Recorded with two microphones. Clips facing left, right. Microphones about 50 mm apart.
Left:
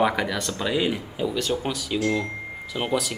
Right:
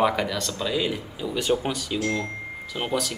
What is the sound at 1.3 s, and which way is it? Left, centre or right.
Speech, centre.